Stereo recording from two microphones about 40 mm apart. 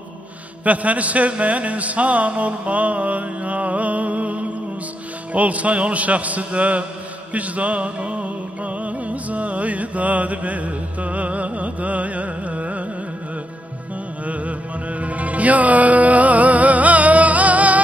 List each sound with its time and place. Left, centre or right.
0.7 s mantra: right
7.3 s music: right
14.2 s music: right